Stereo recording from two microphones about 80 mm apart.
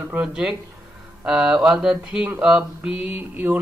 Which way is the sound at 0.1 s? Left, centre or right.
Centre.